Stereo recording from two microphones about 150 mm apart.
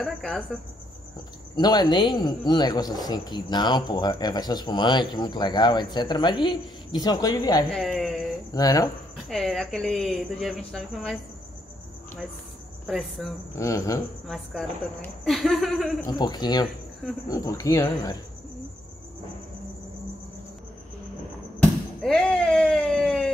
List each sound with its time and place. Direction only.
0.0 s speech: centre (ahead or behind)
1.6 s speech: 30° left (ahead or behind)
7.7 s speech: centre (ahead or behind)
8.5 s speech: 25° left (ahead or behind)
9.3 s speech: centre (ahead or behind)
12.8 s speech: centre (ahead or behind)
13.6 s speech: 20° left (ahead or behind)
14.2 s speech: 5° left (ahead or behind)
16.1 s speech: 25° left (ahead or behind)
21.5 s speech: 5° left (ahead or behind)